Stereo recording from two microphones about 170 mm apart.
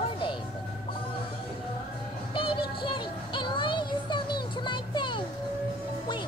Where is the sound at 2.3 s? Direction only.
30° left (ahead or behind).